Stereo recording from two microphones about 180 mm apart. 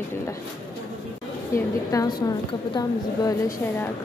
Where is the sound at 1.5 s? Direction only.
20° left (ahead or behind).